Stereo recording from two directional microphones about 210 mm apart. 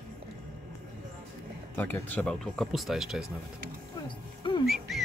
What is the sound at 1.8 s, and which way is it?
Speech, 10° left (ahead or behind).